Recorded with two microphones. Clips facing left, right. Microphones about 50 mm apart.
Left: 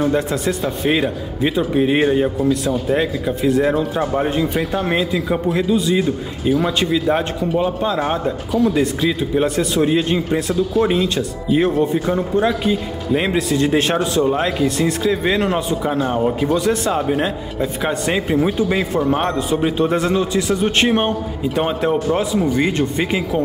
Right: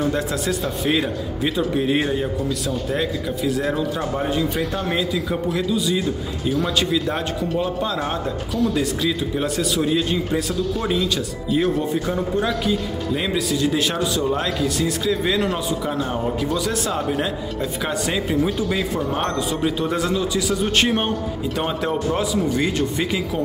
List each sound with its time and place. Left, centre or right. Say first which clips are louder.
0.1 s speech: left 4 dB; left
0.8 s speech: left 4 dB; centre
6.8 s speech: left 4 dB; centre
8.5 s a man's voice: left 5 dB; centre
10.5 s a man's voice: left 6 dB; centre
10.9 s speech: left 3 dB; left
13.1 s a man's voice: left 6 dB; left
14.2 s a man's voice: left 4 dB; left
19.8 s a man's voice: left 5 dB; left
20.6 s speech: left 4 dB; left